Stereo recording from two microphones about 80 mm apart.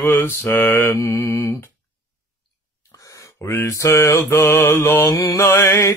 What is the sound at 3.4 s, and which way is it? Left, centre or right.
Mantra, left.